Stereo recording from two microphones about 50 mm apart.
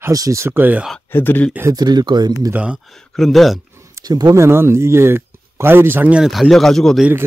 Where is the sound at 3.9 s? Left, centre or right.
Right.